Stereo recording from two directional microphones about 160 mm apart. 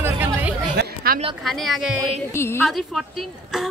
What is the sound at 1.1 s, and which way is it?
Speech, 65° right (ahead or behind).